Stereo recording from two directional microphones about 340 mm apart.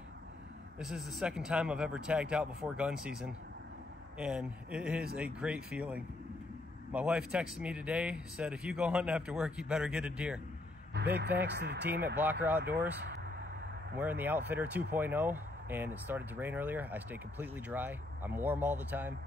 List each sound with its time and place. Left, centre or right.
0.7 s speech: centre
11.1 s speech: right
12.4 s speech: centre
13.9 s speech: centre